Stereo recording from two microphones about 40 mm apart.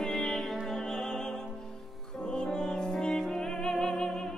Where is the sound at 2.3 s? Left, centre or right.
Centre.